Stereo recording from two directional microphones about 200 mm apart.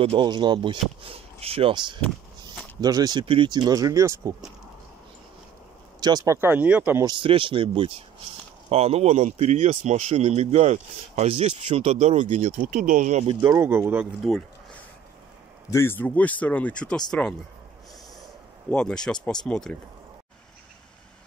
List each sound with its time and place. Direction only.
0.0 s speech: 25° right (ahead or behind)
5.9 s speech: 20° right (ahead or behind)
7.1 s speech: 25° right (ahead or behind)
13.4 s speech: 15° right (ahead or behind)
15.7 s speech: 10° left (ahead or behind)
18.7 s speech: 5° left (ahead or behind)